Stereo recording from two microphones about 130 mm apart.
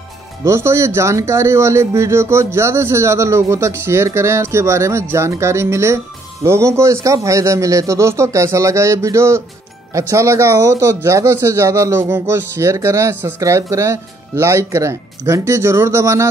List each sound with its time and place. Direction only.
0.5 s speech: 20° right (ahead or behind)